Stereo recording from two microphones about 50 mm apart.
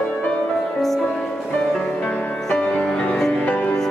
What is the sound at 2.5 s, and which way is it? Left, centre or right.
Music, centre.